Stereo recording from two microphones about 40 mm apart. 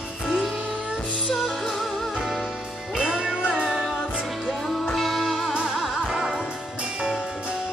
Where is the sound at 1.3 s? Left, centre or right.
Centre.